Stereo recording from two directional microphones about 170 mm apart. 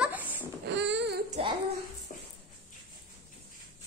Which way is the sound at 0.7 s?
90° right.